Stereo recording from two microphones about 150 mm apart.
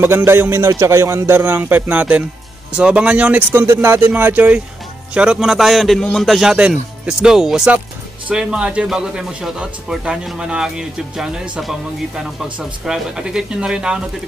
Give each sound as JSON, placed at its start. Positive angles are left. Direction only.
{"t": 0.0, "sound": "a man's voice", "side_deg": -15}
{"t": 12.5, "sound": "speech", "side_deg": -5}